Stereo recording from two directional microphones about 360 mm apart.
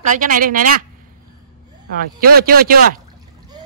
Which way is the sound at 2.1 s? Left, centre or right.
Right.